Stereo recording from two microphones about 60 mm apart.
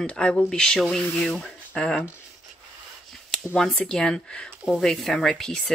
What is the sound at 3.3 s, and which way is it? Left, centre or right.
Speech, centre.